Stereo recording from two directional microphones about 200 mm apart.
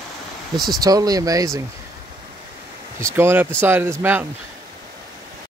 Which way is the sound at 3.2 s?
10° right (ahead or behind).